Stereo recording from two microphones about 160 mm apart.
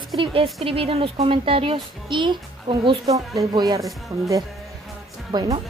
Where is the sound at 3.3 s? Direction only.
20° right (ahead or behind).